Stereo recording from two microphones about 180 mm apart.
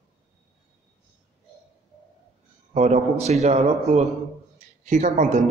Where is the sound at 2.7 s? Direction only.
40° right (ahead or behind).